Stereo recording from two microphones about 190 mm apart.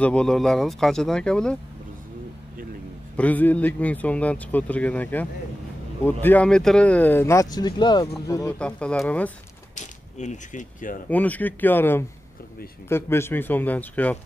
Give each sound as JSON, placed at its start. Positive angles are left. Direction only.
{"t": 0.0, "sound": "speech", "side_deg": 5}
{"t": 3.2, "sound": "speech", "side_deg": 10}
{"t": 8.5, "sound": "speech", "side_deg": 5}
{"t": 9.8, "sound": "speech", "side_deg": 40}
{"t": 11.1, "sound": "speech", "side_deg": 10}